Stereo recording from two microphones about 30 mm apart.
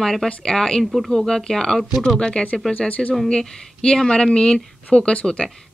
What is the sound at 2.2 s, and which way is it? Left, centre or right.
Speech, left.